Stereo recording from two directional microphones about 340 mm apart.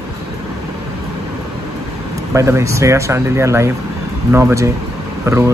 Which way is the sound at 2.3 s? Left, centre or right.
Centre.